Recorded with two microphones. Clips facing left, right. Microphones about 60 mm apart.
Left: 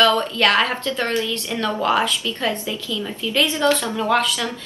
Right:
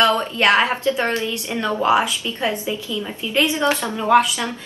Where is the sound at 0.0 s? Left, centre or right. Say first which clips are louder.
Even; right.